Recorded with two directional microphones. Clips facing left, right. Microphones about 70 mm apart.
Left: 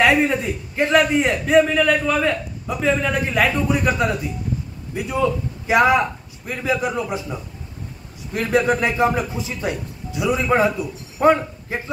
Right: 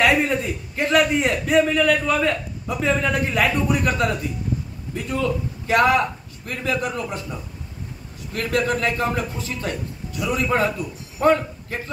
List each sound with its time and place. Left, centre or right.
0.0 s a man's voice: centre
4.9 s a man's voice: centre
8.3 s a man's voice: centre